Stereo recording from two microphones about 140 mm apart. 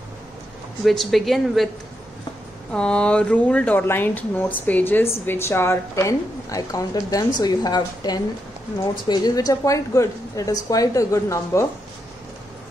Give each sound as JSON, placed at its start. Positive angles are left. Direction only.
{"t": 0.8, "sound": "speech", "side_deg": 0}
{"t": 2.7, "sound": "a woman's voice", "side_deg": 5}